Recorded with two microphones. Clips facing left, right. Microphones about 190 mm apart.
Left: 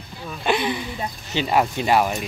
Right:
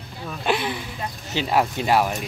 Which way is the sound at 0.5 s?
5° right (ahead or behind).